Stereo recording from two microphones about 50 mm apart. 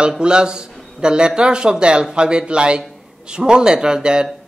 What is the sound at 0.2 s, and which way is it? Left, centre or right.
A woman's voice, centre.